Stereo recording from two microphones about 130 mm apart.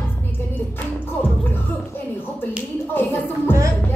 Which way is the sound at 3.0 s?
15° left (ahead or behind).